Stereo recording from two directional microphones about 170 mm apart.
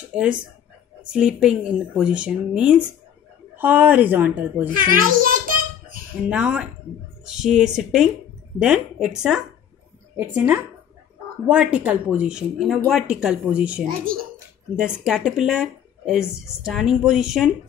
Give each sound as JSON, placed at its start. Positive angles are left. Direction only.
{"t": 0.1, "sound": "a woman's voice", "side_deg": -5}
{"t": 4.6, "sound": "a sound", "side_deg": -55}
{"t": 6.2, "sound": "a woman's voice", "side_deg": -5}